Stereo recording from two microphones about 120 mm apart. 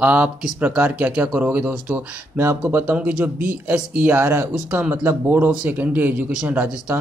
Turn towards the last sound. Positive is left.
turn(degrees=-10)  # may be behind; listen again after turning